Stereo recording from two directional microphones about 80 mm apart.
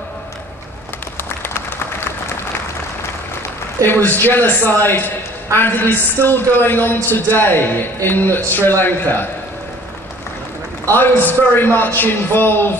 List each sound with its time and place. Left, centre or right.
1.1 s applause: left
3.8 s a man's voice: left
11.0 s a man's voice: left